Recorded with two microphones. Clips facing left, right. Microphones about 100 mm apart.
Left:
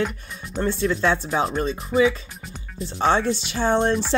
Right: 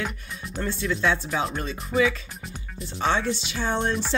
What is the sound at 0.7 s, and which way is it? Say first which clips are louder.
Speech: left 2 dB; 35° left (ahead or behind).